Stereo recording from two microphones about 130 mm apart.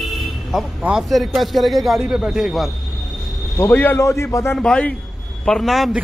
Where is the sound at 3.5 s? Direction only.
15° left (ahead or behind).